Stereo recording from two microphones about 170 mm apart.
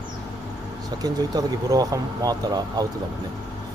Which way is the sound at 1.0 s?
20° right (ahead or behind).